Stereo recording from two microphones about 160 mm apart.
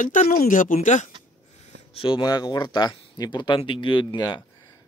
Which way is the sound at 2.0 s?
30° left (ahead or behind).